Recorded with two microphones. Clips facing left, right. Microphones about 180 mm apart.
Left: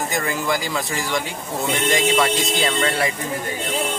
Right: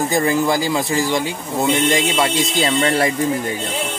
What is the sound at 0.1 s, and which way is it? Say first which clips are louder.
Speech: right 7 dB; 30° right (ahead or behind).